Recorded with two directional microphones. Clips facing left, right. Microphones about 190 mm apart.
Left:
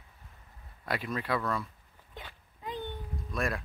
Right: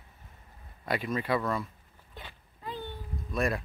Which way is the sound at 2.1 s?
15° left (ahead or behind).